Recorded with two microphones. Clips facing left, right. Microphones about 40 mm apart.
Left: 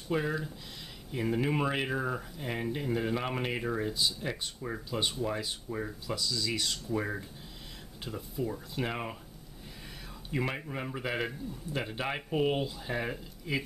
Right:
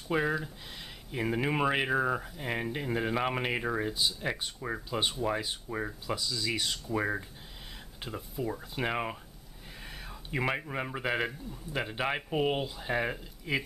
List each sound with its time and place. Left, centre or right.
0.1 s speech: centre
10.0 s a sound: centre
10.7 s speech: centre